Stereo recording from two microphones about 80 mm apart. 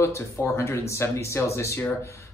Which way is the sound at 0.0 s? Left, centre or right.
Left.